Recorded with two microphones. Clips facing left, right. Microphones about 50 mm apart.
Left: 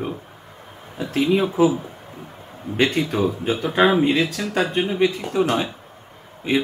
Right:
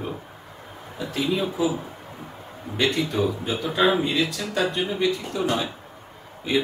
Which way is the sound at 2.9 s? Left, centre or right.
Left.